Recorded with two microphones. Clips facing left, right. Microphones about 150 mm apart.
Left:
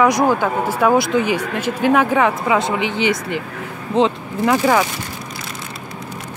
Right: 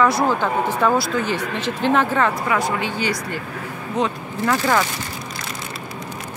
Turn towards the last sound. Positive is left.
turn(degrees=15)  # may be behind; listen again after turning